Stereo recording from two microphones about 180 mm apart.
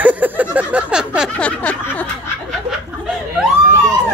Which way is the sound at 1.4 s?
10° left (ahead or behind).